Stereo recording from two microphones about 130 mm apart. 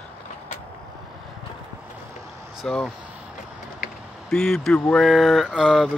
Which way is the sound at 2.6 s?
5° left (ahead or behind).